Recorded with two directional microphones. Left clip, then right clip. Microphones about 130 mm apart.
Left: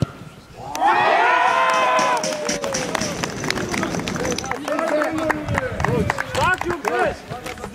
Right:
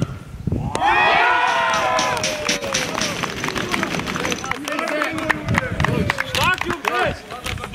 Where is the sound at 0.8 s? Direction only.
20° right (ahead or behind).